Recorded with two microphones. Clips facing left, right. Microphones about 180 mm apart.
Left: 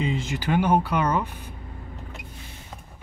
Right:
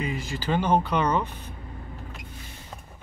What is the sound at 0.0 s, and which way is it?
Speech, 25° left (ahead or behind).